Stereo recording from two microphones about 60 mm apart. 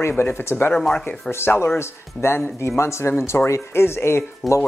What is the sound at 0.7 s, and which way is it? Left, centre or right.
Speech, centre.